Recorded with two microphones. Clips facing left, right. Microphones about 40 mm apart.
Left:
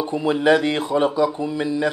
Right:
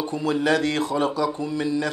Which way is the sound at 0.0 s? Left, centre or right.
Left.